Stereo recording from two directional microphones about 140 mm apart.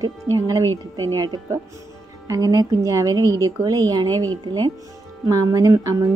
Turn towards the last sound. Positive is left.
turn(degrees=-25)  # may be behind; listen again after turning